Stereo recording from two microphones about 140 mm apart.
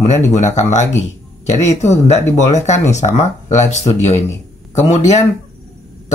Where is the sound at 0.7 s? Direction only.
60° left (ahead or behind).